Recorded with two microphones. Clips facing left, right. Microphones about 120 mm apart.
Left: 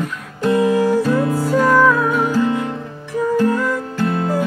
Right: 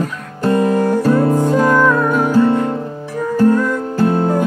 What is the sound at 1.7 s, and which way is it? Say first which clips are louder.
Music: right 1 dB; 5° left (ahead or behind).